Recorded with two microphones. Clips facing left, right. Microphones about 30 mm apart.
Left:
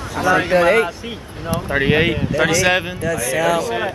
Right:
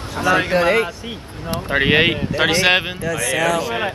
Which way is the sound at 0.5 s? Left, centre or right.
Centre.